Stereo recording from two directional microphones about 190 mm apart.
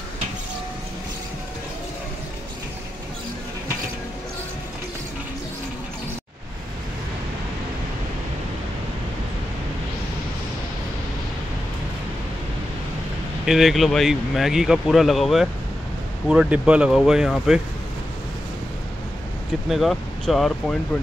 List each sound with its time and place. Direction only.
13.5 s speech: centre (ahead or behind)
19.7 s speech: centre (ahead or behind)